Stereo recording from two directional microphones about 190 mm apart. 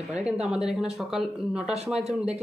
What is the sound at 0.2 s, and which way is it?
Speech, 5° right (ahead or behind).